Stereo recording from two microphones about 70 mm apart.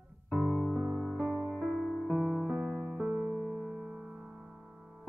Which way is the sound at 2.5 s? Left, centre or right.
Right.